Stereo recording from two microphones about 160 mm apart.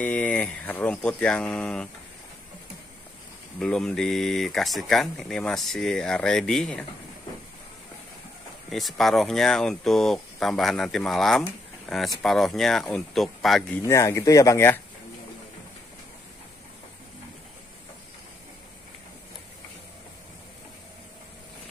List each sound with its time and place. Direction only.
0.0 s speech: 10° left (ahead or behind)
3.5 s speech: 5° left (ahead or behind)
8.6 s speech: centre (ahead or behind)
13.8 s speech: 20° left (ahead or behind)